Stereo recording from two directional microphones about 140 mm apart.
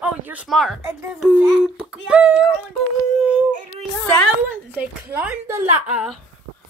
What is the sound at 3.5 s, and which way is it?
Child singing, 50° right (ahead or behind).